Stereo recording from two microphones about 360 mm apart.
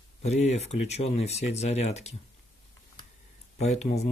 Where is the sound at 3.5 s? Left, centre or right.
Centre.